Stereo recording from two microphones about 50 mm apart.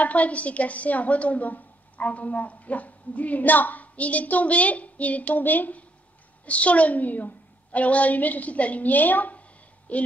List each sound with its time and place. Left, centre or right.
0.0 s a woman's voice: left